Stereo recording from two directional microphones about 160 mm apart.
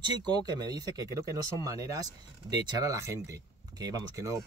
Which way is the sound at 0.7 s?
25° right (ahead or behind).